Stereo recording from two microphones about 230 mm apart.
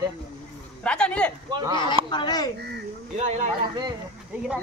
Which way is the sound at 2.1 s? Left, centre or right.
Centre.